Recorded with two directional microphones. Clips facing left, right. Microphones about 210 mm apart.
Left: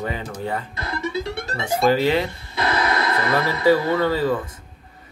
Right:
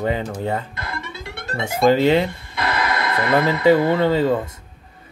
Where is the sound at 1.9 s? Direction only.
25° right (ahead or behind).